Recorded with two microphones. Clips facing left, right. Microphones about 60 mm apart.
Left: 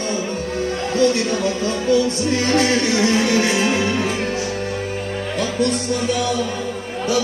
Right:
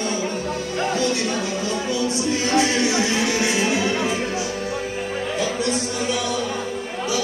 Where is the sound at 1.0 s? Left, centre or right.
Left.